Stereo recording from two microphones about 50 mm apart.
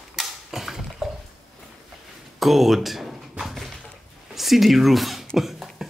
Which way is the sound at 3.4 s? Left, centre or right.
Centre.